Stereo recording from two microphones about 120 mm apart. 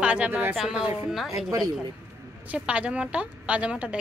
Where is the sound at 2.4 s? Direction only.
10° right (ahead or behind).